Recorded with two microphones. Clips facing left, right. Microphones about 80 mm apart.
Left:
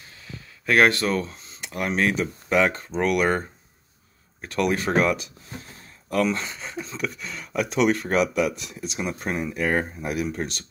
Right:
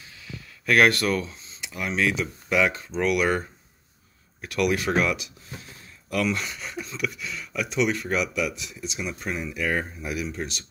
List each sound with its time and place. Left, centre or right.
0.7 s speech: left
1.2 s speech: left